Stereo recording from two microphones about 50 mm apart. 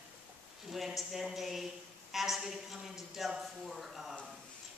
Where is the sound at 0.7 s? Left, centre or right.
Centre.